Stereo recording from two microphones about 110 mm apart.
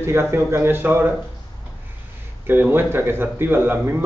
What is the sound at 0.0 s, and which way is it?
Speech, 25° right (ahead or behind).